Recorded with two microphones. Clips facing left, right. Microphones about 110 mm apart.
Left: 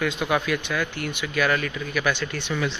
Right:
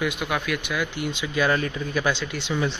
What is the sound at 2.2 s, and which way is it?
Speech, 15° right (ahead or behind).